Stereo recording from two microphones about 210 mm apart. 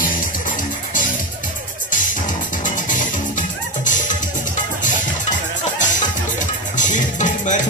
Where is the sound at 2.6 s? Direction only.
40° left (ahead or behind).